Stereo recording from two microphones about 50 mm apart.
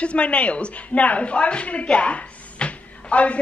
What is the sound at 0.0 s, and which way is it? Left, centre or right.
Speech, left.